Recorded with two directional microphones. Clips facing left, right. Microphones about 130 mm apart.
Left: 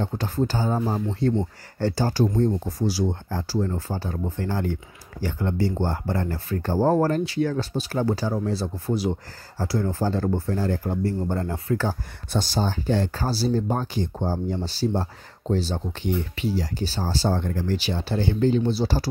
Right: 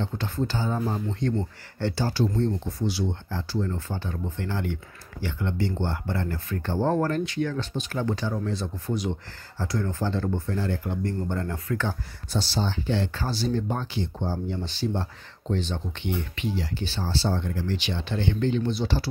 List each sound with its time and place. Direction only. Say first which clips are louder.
0.0 s speech: left 4 dB; 40° left (ahead or behind)
12.3 s speech: left 3 dB; 50° left (ahead or behind)